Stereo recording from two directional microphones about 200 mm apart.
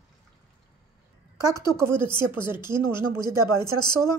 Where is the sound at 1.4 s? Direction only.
15° right (ahead or behind).